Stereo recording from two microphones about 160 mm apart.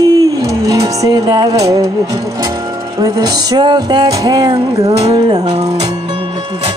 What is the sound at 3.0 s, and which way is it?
Music, 25° right (ahead or behind).